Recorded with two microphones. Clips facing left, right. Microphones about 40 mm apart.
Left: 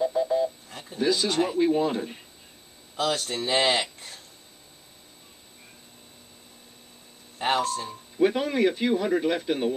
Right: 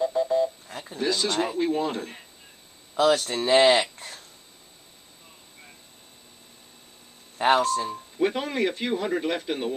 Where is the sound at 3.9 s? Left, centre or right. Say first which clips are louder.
Right 3 dB; right.